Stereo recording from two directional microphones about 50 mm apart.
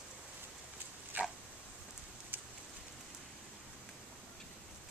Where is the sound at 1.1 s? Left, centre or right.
Right.